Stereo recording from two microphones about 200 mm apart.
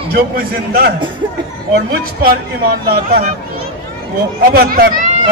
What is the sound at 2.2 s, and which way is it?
Speech, 50° right (ahead or behind).